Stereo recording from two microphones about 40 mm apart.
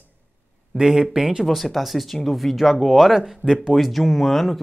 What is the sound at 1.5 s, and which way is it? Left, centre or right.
Speech, centre.